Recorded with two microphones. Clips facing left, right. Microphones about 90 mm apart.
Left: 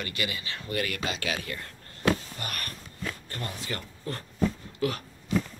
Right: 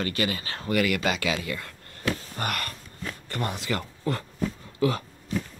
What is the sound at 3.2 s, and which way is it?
Speech, 80° right.